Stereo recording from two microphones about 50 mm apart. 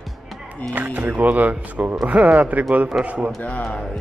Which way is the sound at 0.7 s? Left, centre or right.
Right.